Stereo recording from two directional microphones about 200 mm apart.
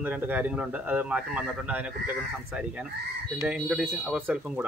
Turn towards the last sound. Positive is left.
turn(degrees=-10)  # may be behind; listen again after turning